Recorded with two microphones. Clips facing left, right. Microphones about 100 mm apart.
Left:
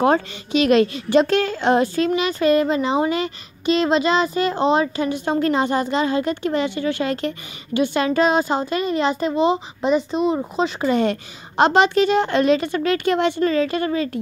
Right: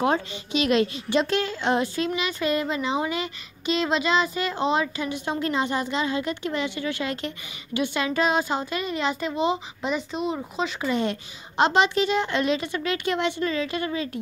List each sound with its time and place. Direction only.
0.0 s a woman's voice: 50° left (ahead or behind)
11.0 s a woman's voice: 55° left (ahead or behind)